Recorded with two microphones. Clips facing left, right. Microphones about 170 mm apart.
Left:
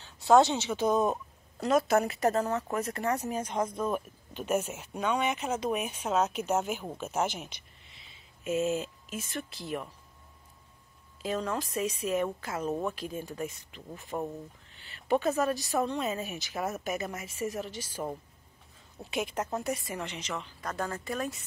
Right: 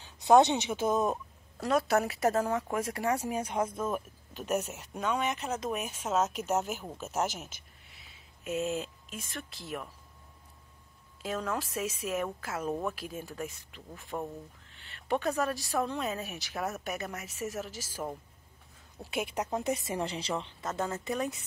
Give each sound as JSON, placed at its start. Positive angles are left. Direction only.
{"t": 0.0, "sound": "a woman's voice", "side_deg": -20}
{"t": 11.2, "sound": "a woman's voice", "side_deg": 0}
{"t": 20.0, "sound": "a woman's voice", "side_deg": -30}